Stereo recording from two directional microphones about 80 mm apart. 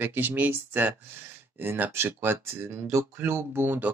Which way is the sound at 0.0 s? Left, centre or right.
Right.